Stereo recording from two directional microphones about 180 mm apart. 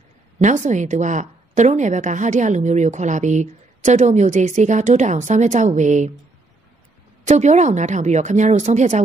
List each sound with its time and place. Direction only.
0.4 s a woman's voice: 45° right (ahead or behind)
7.2 s a woman's voice: 40° right (ahead or behind)